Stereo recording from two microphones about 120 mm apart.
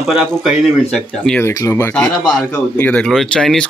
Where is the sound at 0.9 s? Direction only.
5° left (ahead or behind).